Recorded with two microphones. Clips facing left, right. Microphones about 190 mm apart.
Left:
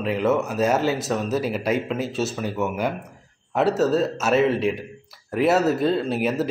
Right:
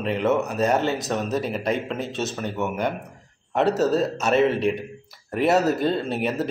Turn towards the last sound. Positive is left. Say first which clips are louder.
# left 2 dB
turn(degrees=0)  # may be behind; listen again after turning